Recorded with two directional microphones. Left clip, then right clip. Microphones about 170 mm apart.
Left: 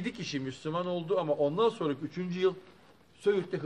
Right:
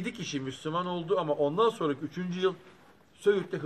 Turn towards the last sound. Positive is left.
turn(degrees=5)  # may be behind; listen again after turning